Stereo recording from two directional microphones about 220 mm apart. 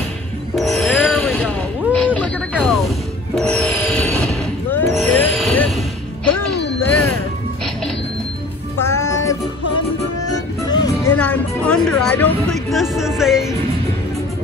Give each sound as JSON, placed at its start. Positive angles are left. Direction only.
{"t": 0.6, "sound": "a sound", "side_deg": 0}
{"t": 2.3, "sound": "a sound", "side_deg": -5}
{"t": 3.3, "sound": "music", "side_deg": 0}
{"t": 5.0, "sound": "vehicle", "side_deg": 10}
{"t": 6.8, "sound": "music", "side_deg": 10}
{"t": 8.7, "sound": "music", "side_deg": 10}
{"t": 10.7, "sound": "music", "side_deg": 20}
{"t": 11.1, "sound": "music", "side_deg": 5}